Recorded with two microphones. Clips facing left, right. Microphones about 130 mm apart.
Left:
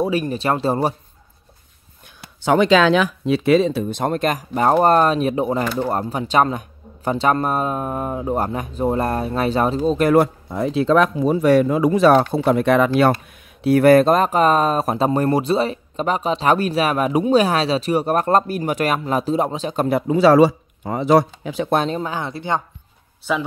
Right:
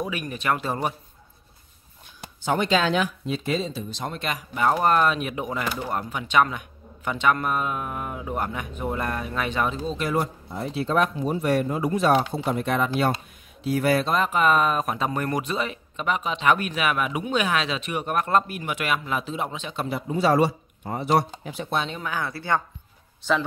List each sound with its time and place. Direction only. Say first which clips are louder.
0.0 s speech: left 8 dB; 30° left (ahead or behind)
2.4 s speech: left 8 dB; 90° left
12.2 s speech: left 8 dB; 75° left (ahead or behind)
13.6 s speech: left 10 dB; 65° left (ahead or behind); by 20.0 s 45° left (ahead or behind)
20.0 s speech: left 8 dB; 90° left
21.7 s speech: left 6 dB; 40° left (ahead or behind); by 22.6 s 20° left (ahead or behind)